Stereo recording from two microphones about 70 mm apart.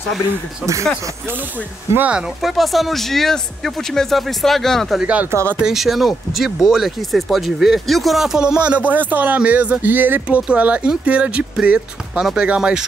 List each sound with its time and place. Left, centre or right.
2.0 s speech: centre
2.4 s speech: centre
5.0 s speech: centre
5.3 s speech: right
5.6 s speech: centre